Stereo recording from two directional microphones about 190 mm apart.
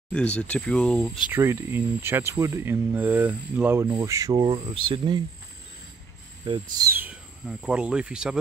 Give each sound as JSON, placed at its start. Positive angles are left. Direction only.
{"t": 0.4, "sound": "speech", "side_deg": 5}
{"t": 1.3, "sound": "speech", "side_deg": -15}
{"t": 6.5, "sound": "speech", "side_deg": -25}
{"t": 6.9, "sound": "speech", "side_deg": -10}